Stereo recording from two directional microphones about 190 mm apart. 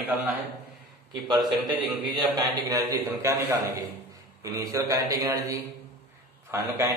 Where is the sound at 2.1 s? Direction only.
20° right (ahead or behind).